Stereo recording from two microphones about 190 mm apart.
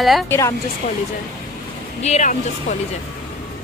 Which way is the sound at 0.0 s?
Centre (ahead or behind).